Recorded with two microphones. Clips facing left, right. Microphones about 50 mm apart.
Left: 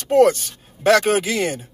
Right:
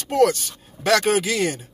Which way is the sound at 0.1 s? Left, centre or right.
Left.